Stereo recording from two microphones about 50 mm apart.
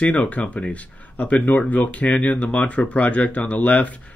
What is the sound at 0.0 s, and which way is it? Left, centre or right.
Speech, left.